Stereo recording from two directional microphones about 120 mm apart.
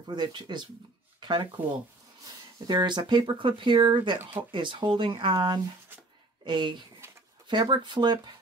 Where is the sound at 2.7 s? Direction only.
40° right (ahead or behind).